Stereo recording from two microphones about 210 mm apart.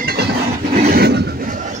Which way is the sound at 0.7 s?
40° right (ahead or behind).